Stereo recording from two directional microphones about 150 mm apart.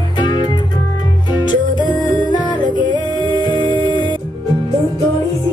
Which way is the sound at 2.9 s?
30° right (ahead or behind).